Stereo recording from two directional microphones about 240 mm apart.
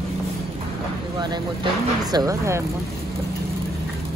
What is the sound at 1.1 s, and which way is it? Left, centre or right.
Speech, centre.